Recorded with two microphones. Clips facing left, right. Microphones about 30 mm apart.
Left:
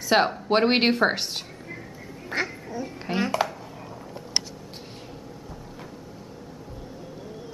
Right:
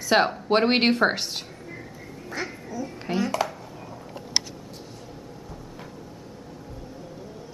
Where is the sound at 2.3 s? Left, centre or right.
Left.